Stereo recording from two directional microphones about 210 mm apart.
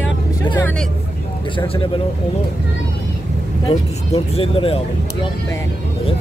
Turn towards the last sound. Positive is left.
turn(degrees=25)  # may be behind; listen again after turning